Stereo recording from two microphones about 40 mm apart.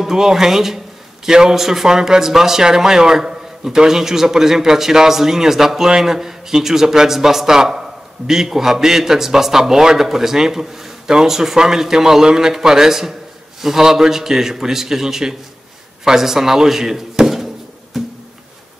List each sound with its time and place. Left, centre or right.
0.0 s speech: centre
17.9 s music: centre